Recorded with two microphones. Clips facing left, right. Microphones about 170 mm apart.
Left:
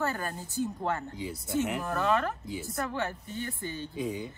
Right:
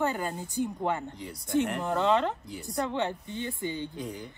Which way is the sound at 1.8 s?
20° right (ahead or behind).